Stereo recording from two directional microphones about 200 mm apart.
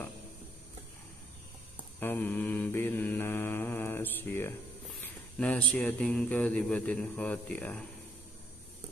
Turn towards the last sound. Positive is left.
turn(degrees=5)  # may be behind; listen again after turning